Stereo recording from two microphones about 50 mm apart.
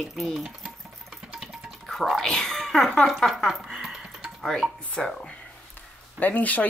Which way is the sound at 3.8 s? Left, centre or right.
Centre.